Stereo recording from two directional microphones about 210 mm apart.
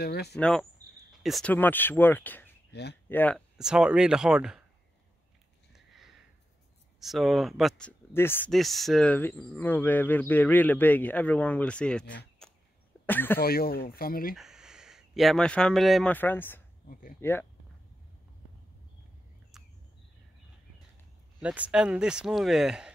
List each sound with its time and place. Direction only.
0.0 s speech: 50° left (ahead or behind)
0.4 s speech: 5° left (ahead or behind)
2.7 s speech: 55° left (ahead or behind)
3.1 s speech: 5° left (ahead or behind)
7.0 s speech: centre (ahead or behind)
12.4 s a sound: 5° left (ahead or behind)
13.0 s speech: 10° left (ahead or behind)
13.4 s speech: 45° left (ahead or behind)
14.3 s speech: centre (ahead or behind)
16.9 s speech: 40° left (ahead or behind)
17.2 s speech: 10° left (ahead or behind)
21.4 s speech: 5° right (ahead or behind)